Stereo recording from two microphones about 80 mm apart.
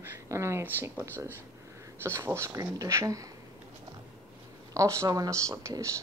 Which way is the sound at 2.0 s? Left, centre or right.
Right.